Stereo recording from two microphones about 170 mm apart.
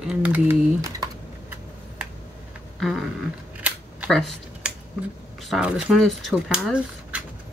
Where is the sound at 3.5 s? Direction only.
10° right (ahead or behind).